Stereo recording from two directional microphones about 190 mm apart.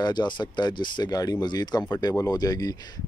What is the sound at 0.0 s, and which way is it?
Speech, 25° left (ahead or behind).